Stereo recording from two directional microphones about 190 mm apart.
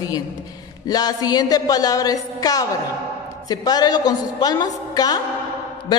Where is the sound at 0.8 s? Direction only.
20° left (ahead or behind).